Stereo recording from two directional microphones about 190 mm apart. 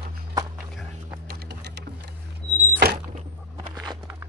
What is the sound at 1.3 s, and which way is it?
Sewing machine, 60° right (ahead or behind).